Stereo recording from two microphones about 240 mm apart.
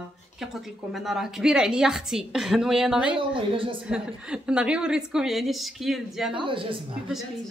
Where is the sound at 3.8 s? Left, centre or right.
Centre.